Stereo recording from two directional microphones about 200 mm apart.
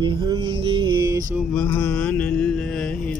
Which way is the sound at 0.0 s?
25° right (ahead or behind).